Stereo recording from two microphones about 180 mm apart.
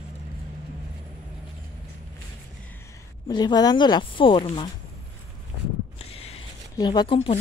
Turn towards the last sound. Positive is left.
turn(degrees=30)  # may be behind; listen again after turning